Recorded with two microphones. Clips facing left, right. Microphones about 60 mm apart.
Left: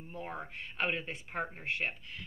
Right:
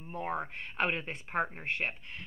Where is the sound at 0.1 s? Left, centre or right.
Right.